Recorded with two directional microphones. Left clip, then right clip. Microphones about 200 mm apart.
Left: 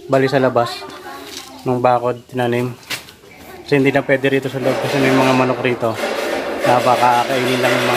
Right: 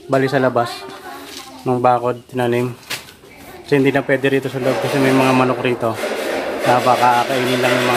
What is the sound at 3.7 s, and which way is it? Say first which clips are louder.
Speech: left 1 dB; 5° right (ahead or behind).